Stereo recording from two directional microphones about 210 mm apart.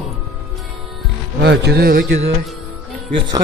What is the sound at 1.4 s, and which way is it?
Speech, 55° right (ahead or behind).